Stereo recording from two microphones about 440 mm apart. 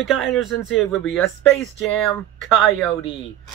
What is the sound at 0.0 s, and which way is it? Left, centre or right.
Speech, centre.